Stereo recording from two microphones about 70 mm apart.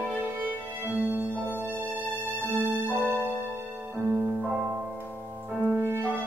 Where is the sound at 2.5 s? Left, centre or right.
Right.